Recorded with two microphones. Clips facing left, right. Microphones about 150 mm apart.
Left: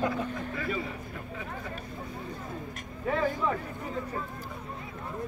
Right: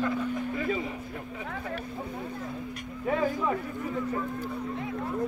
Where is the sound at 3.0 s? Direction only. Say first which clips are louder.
Right 1 dB; 15° right (ahead or behind).